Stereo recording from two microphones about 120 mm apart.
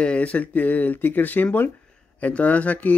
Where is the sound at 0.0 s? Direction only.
10° left (ahead or behind).